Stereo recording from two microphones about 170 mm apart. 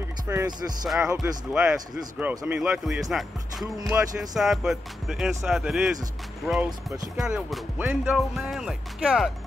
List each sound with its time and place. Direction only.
0.3 s speech: 15° right (ahead or behind)
1.2 s speech: 5° right (ahead or behind)
3.8 s speech: 20° right (ahead or behind)
4.4 s speech: centre (ahead or behind)
8.2 s speech: centre (ahead or behind)